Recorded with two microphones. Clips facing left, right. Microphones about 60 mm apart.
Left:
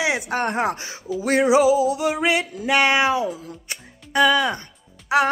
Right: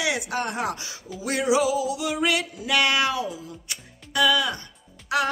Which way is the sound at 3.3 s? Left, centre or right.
Left.